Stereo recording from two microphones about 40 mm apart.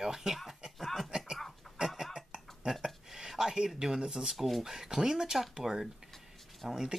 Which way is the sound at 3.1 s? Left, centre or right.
Centre.